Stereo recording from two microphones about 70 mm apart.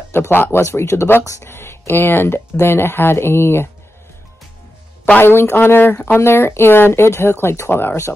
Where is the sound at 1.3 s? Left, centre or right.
Left.